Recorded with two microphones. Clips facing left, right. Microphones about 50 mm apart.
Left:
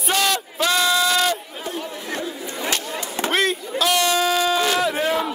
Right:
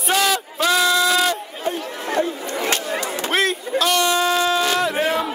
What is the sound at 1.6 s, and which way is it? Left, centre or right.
Chatter, right.